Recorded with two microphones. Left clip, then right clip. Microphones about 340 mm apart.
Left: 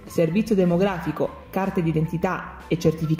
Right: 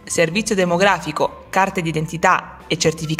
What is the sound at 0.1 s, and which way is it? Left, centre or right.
Speech, right.